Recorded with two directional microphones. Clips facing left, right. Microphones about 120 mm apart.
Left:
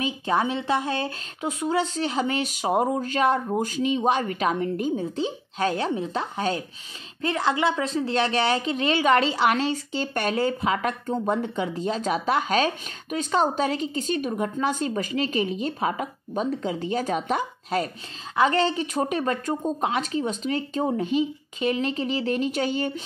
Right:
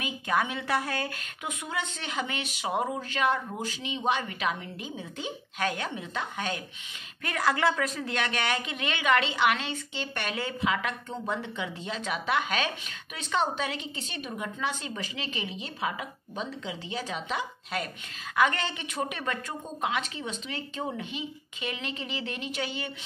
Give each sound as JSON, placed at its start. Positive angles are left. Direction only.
{"t": 0.0, "sound": "a woman's voice", "side_deg": 30}
{"t": 5.1, "sound": "a woman's voice", "side_deg": 30}
{"t": 18.3, "sound": "a woman's voice", "side_deg": 30}